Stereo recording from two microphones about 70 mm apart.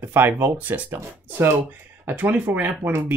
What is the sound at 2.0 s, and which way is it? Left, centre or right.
Speech, right.